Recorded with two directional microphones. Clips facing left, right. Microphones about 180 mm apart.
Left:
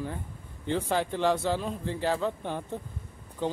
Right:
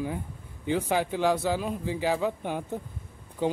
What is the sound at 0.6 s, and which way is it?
Speech, 5° right (ahead or behind).